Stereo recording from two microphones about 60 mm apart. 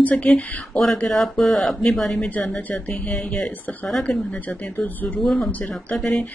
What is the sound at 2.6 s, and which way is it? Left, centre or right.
Speech, left.